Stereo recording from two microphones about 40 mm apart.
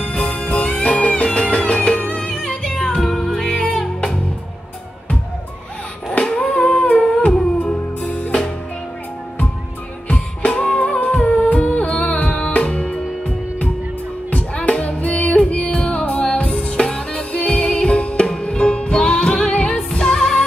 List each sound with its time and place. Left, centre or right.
0.0 s music: left
6.2 s humming: centre
6.5 s humming: left
8.0 s music: left
10.0 s music: left
14.3 s music: left
16.5 s music: centre
17.3 s music: left
19.9 s music: centre